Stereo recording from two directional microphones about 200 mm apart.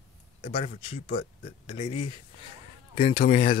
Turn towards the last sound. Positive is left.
turn(degrees=45)  # may be behind; listen again after turning